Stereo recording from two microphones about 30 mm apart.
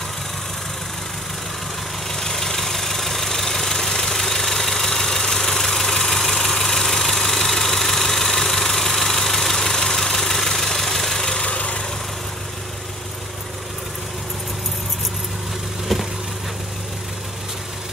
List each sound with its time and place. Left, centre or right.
2.0 s vehicle: centre
5.2 s engine: centre
6.0 s vehicle: centre
11.4 s vehicle: left
15.9 s vehicle: centre